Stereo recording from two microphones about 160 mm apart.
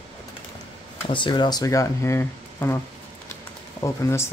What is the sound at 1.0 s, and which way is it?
Speech, 30° left (ahead or behind).